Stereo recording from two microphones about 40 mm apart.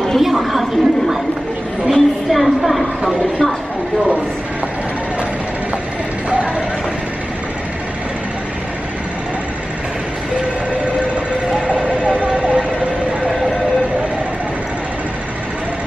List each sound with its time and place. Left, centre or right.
0.2 s a woman's voice: centre
12.0 s vehicle: right